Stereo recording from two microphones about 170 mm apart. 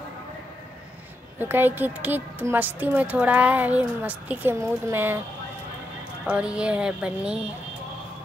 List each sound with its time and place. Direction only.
1.4 s a woman's voice: 10° right (ahead or behind)
6.2 s music: 5° right (ahead or behind)